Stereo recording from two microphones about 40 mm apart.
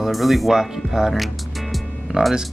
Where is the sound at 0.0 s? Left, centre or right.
Centre.